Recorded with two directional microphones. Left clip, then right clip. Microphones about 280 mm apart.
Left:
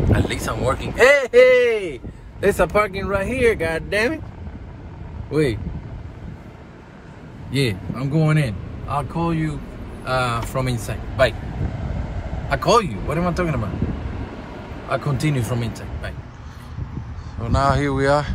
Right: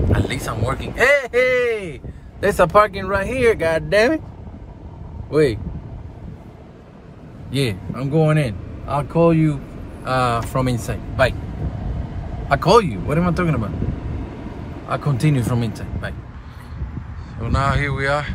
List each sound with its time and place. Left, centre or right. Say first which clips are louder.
0.1 s speech: left 1 dB; centre
5.3 s speech: right 4 dB; centre
7.5 s speech: even; centre
12.4 s speech: right 3 dB; centre
14.9 s speech: right 1 dB; centre
17.4 s speech: left 1 dB; centre